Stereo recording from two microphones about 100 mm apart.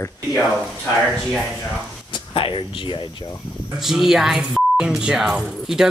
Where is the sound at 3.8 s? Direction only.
5° right (ahead or behind).